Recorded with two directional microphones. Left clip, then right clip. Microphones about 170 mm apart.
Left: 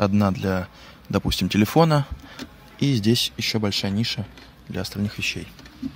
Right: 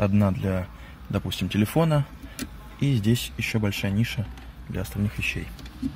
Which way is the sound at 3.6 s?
30° left (ahead or behind).